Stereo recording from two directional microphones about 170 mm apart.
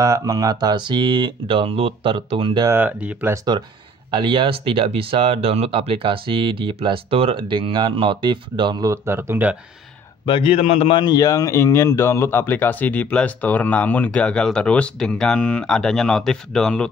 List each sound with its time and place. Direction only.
0.0 s speech: 20° right (ahead or behind)
2.7 s speech: 10° right (ahead or behind)
4.1 s speech: 30° right (ahead or behind); by 9.6 s 10° right (ahead or behind)
10.2 s a man's voice: 30° left (ahead or behind); by 16.9 s 5° left (ahead or behind)